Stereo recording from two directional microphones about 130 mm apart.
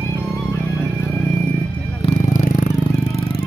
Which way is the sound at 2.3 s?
80° left.